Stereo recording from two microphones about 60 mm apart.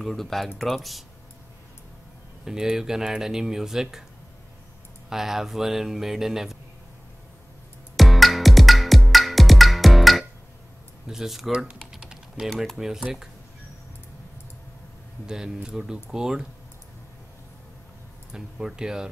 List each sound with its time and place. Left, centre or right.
0.0 s speech: centre
2.4 s speech: centre
5.1 s speech: centre
7.9 s music: centre
11.1 s speech: centre
11.9 s typing: centre
12.4 s speech: centre
15.2 s speech: centre
18.3 s speech: centre